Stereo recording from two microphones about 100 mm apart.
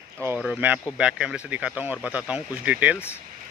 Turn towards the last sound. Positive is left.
turn(degrees=-15)  # may be behind; listen again after turning